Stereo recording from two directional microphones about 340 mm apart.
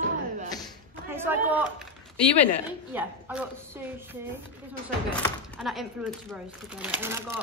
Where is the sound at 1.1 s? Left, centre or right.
Centre.